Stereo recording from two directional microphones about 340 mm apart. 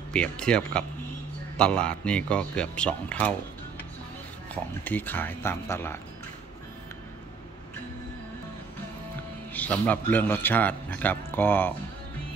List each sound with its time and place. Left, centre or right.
0.1 s a man's voice: centre
4.8 s speech: centre
9.5 s a man's voice: centre